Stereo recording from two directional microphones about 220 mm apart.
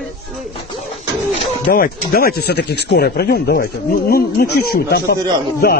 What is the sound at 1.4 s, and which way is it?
Speech, 40° left (ahead or behind).